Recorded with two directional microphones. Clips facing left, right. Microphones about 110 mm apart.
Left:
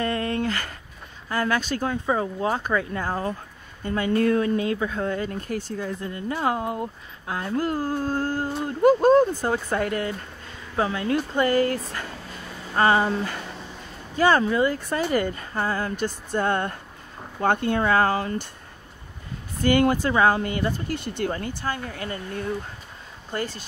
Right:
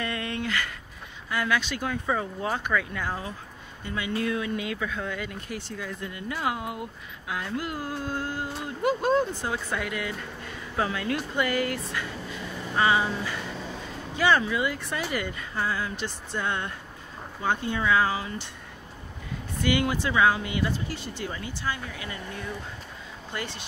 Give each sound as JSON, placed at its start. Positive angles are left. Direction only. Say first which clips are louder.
{"t": 0.0, "sound": "a sound", "louder": "left 6 dB", "side_deg": 40}
{"t": 1.3, "sound": "speech", "louder": "left 3 dB", "side_deg": 40}
{"t": 1.9, "sound": "speech", "louder": "left 3 dB", "side_deg": 30}
{"t": 10.8, "sound": "speech", "louder": "left 4 dB", "side_deg": 30}
{"t": 19.6, "sound": "speech", "louder": "left 6 dB", "side_deg": 45}